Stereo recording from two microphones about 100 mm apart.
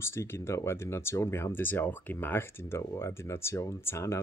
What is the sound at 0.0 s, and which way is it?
Speech, 25° left (ahead or behind).